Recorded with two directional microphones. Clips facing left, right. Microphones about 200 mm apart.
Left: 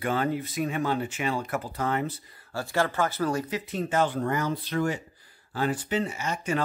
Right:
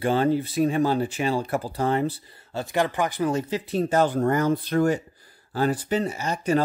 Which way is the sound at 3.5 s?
35° right (ahead or behind).